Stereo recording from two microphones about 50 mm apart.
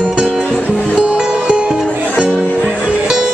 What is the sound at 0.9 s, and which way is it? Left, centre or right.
Music, centre.